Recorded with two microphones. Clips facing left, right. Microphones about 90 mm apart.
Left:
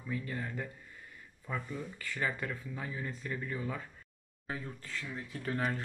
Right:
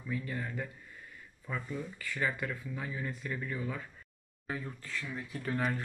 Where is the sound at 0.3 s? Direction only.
40° left (ahead or behind).